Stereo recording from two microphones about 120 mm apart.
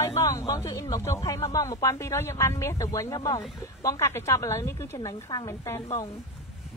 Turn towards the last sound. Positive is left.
turn(degrees=25)  # may be behind; listen again after turning